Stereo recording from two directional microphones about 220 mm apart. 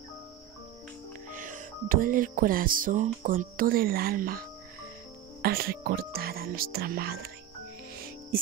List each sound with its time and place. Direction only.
1.3 s speech: 35° right (ahead or behind)
7.9 s cricket: 40° right (ahead or behind)